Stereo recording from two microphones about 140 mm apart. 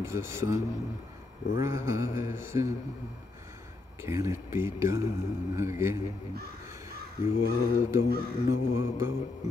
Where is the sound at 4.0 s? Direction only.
20° right (ahead or behind).